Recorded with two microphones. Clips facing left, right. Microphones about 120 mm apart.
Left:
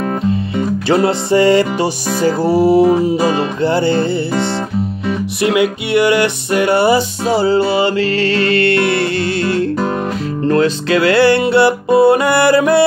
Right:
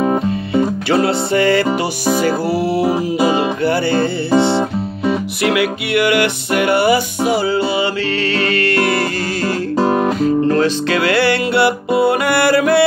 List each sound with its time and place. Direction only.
1.0 s music: 25° left (ahead or behind)
1.8 s music: 15° right (ahead or behind)
2.5 s music: 25° left (ahead or behind)
2.8 s music: 5° right (ahead or behind)
3.6 s music: 20° left (ahead or behind)
4.3 s music: 25° right (ahead or behind)
5.4 s music: 25° left (ahead or behind)
8.2 s music: 30° left (ahead or behind)
8.9 s music: 35° right (ahead or behind)
11.1 s music: 25° left (ahead or behind)